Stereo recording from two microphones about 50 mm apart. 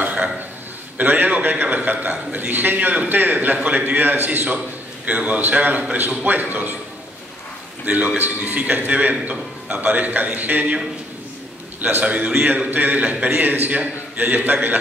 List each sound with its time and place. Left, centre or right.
0.0 s burping: right
0.9 s a man's voice: right
7.8 s a man's voice: right
11.9 s a man's voice: right